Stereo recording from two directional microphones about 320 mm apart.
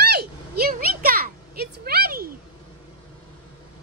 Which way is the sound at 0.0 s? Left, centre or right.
Right.